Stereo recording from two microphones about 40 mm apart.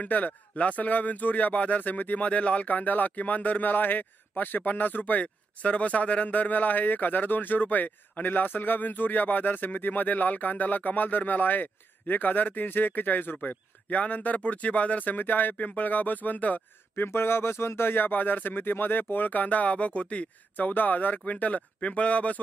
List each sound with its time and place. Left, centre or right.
0.0 s speech: left
16.9 s speech: left